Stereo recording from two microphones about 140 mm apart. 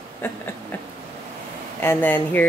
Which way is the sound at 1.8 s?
15° left (ahead or behind).